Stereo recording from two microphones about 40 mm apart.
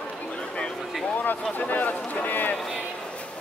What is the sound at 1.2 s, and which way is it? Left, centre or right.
Speech, left.